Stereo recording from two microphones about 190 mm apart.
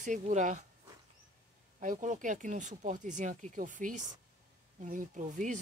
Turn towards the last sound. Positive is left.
turn(degrees=-40)  # may be behind; listen again after turning